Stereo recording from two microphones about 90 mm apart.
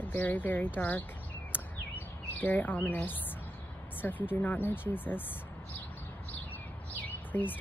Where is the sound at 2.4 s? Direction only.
20° left (ahead or behind).